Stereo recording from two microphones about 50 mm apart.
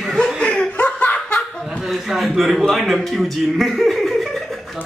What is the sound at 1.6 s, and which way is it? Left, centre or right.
Chuckle, centre.